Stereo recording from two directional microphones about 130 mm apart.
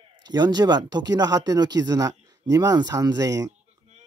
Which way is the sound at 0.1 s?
35° right (ahead or behind).